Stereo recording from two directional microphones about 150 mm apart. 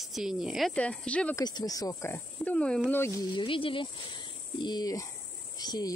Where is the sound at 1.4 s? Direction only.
25° left (ahead or behind).